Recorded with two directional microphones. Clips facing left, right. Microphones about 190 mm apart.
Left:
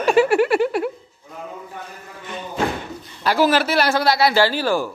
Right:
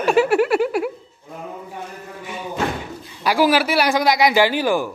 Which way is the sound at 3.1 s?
10° right (ahead or behind).